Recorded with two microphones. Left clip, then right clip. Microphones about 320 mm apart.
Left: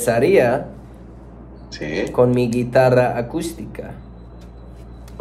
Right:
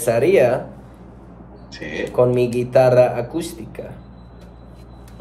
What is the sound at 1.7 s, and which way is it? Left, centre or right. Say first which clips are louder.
Speech: left 3 dB; centre.